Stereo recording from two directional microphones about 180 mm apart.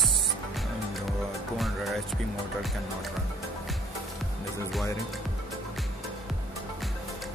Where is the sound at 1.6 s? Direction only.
Centre (ahead or behind).